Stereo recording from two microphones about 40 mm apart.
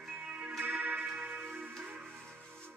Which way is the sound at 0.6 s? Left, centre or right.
Right.